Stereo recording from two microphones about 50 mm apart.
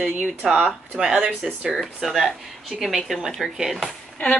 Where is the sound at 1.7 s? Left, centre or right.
Centre.